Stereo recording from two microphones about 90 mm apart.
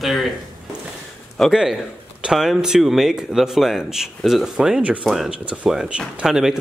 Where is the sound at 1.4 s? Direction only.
5° right (ahead or behind).